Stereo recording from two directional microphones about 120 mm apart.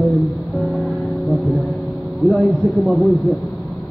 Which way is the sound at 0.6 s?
Centre (ahead or behind).